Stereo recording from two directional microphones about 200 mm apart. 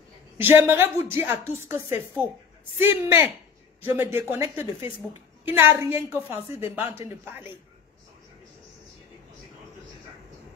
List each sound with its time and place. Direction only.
0.4 s a woman's voice: 10° right (ahead or behind)